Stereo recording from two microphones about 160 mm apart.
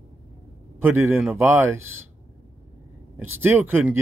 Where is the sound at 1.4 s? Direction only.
15° right (ahead or behind).